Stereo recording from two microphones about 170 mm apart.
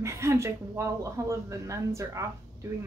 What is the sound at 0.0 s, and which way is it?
Speech, 15° right (ahead or behind).